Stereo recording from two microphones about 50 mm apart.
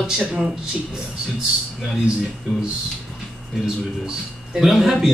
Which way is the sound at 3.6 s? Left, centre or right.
Centre.